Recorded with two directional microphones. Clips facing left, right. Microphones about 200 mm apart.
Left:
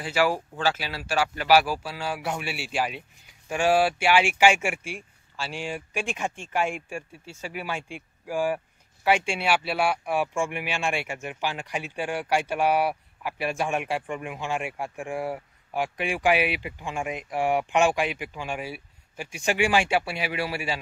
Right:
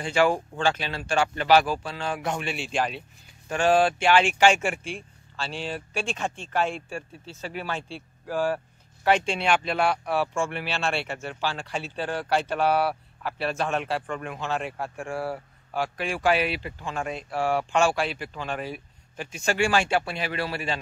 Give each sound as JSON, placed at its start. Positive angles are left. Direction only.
{"t": 0.0, "sound": "speech", "side_deg": 5}